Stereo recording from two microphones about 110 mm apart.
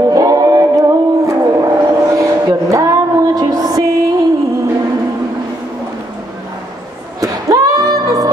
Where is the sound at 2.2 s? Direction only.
30° right (ahead or behind).